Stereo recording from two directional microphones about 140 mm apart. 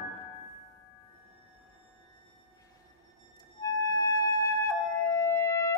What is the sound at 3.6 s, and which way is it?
Music, 25° left (ahead or behind).